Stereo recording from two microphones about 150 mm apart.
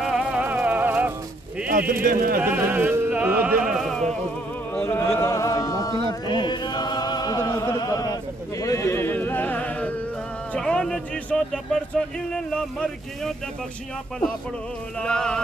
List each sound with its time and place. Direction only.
0.0 s music: 5° right (ahead or behind)
1.7 s speech: 75° right (ahead or behind)
2.4 s music: 10° right (ahead or behind)
3.7 s music: centre (ahead or behind)
4.7 s a sound: 10° left (ahead or behind)
10.5 s a man's voice: 5° left (ahead or behind)
15.0 s speech: 5° left (ahead or behind)